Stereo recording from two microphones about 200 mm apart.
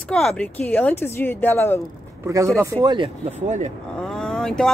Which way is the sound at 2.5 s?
20° right (ahead or behind).